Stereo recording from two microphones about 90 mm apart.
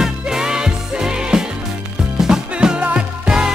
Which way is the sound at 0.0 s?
5° right (ahead or behind).